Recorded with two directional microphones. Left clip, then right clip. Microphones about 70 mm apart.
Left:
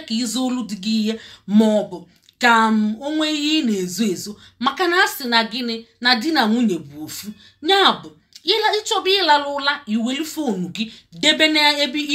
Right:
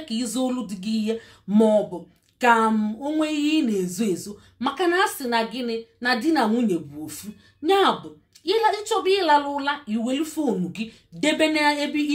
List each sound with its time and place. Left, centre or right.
0.0 s speech: right